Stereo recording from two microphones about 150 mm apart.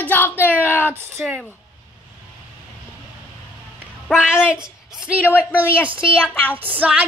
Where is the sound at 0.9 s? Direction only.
15° right (ahead or behind).